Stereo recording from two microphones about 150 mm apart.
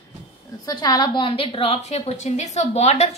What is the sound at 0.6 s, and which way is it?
A woman's voice, 25° left (ahead or behind).